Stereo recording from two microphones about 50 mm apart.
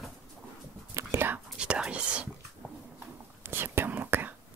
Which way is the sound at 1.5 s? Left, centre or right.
Centre.